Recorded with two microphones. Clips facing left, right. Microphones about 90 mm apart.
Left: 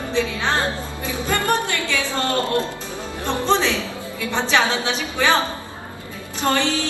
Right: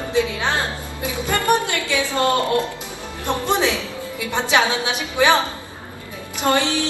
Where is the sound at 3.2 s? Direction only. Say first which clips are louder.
Even; 15° right (ahead or behind).